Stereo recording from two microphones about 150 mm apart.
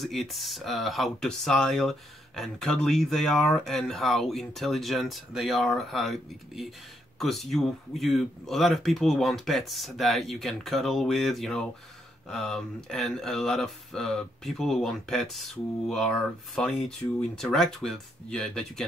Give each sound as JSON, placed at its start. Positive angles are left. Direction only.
{"t": 0.0, "sound": "speech", "side_deg": 0}